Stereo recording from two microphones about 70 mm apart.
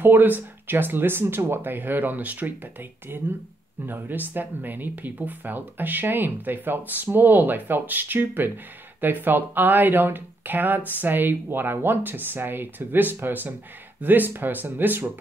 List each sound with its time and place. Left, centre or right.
0.0 s speech: right